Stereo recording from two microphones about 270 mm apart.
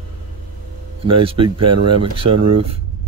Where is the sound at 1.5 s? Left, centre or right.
Right.